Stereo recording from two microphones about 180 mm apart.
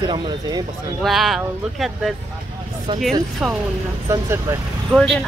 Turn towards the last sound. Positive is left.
turn(degrees=0)  # may be behind; listen again after turning